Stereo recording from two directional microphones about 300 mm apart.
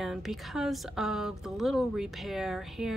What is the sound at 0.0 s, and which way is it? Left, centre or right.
A woman's voice, centre.